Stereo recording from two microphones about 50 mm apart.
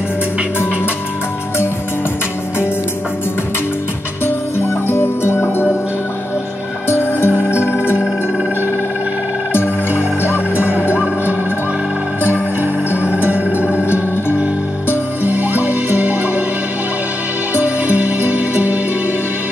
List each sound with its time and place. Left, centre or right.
4.2 s music: left
6.9 s music: left
9.5 s music: left
13.3 s music: right
15.2 s music: right
17.6 s music: right